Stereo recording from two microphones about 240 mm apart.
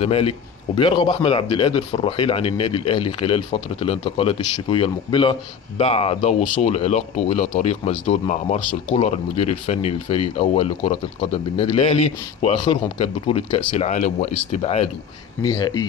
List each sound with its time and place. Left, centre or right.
0.0 s a man's voice: left